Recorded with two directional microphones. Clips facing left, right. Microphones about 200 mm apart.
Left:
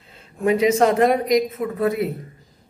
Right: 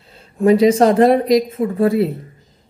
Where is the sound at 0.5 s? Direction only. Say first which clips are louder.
Right 5 dB; 35° right (ahead or behind).